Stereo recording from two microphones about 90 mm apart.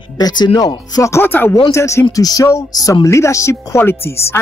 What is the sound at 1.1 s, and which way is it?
Speech, 25° left (ahead or behind).